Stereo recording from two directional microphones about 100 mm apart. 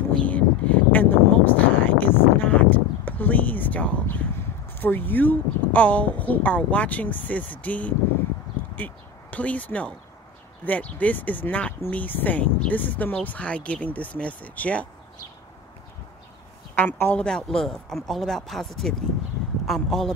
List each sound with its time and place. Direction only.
0.3 s a sound: 15° left (ahead or behind)
4.7 s speech: 20° left (ahead or behind)
16.7 s speech: 15° left (ahead or behind)